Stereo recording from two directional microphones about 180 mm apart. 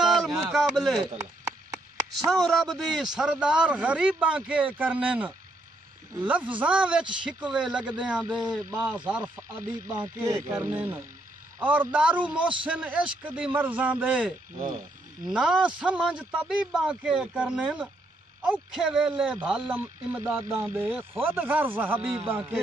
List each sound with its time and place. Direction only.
0.0 s a sound: centre (ahead or behind)
2.1 s speech: centre (ahead or behind)
9.8 s speech: 15° right (ahead or behind)